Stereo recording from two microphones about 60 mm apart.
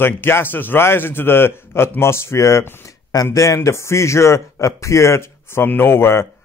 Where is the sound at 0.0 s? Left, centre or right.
Left.